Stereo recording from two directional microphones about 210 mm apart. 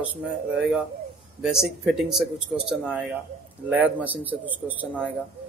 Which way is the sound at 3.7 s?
5° right (ahead or behind).